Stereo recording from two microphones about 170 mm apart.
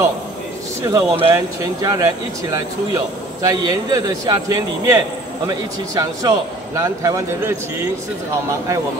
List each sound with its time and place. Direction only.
0.8 s a man's voice: 20° right (ahead or behind)